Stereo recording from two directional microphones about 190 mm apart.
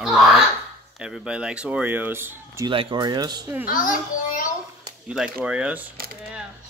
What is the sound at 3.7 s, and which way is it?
Speech, 45° left (ahead or behind).